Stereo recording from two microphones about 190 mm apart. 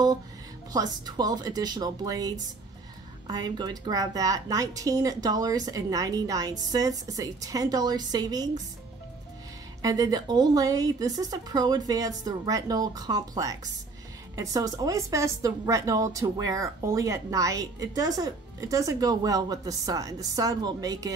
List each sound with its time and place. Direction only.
0.7 s a woman's voice: 20° right (ahead or behind)
9.8 s a woman's voice: 20° right (ahead or behind)